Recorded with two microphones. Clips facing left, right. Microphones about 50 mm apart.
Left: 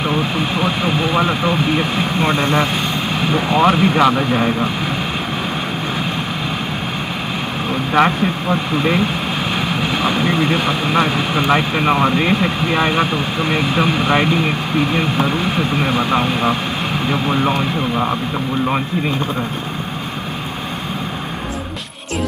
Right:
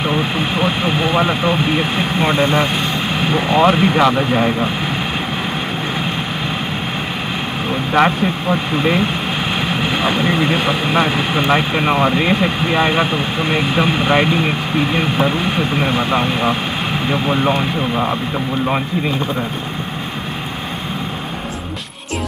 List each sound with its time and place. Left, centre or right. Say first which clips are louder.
0.0 s speech: even; centre
7.9 s speech: even; centre
8.7 s speech: even; centre